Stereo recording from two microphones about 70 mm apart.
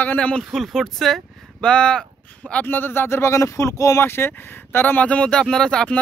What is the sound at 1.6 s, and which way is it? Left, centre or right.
Speech, centre.